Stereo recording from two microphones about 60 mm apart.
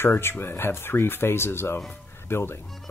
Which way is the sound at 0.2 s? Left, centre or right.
Left.